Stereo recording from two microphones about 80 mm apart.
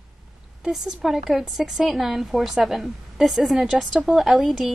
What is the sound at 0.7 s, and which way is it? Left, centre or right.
A woman's voice, centre.